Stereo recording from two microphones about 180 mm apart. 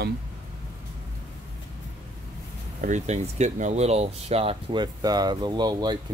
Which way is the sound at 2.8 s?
40° right (ahead or behind).